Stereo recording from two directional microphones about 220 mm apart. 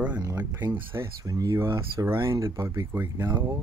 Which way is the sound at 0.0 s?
10° right (ahead or behind).